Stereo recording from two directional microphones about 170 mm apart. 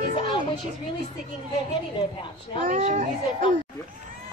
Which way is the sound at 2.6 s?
40° right (ahead or behind).